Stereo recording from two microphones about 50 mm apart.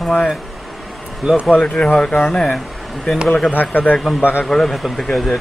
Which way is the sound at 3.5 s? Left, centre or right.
Left.